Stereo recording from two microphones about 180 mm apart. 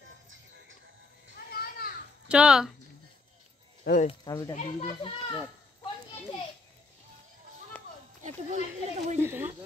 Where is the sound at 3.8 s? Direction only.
45° left (ahead or behind).